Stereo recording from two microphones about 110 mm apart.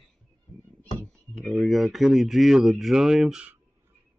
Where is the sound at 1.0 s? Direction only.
Centre (ahead or behind).